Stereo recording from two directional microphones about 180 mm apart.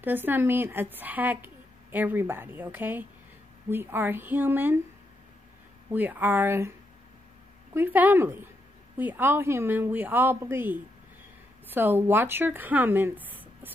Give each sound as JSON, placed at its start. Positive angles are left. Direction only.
{"t": 0.0, "sound": "a woman's voice", "side_deg": -10}
{"t": 5.9, "sound": "a woman's voice", "side_deg": -10}
{"t": 7.7, "sound": "a woman's voice", "side_deg": -10}